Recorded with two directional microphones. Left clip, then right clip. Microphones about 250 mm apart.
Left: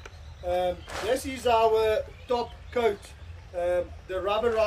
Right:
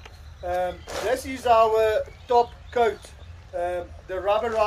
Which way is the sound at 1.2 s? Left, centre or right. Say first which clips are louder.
Right 5 dB; centre.